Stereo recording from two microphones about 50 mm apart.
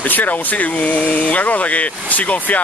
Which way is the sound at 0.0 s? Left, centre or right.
Left.